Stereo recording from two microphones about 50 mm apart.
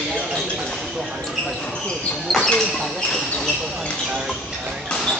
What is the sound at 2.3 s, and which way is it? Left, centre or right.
Speech, centre.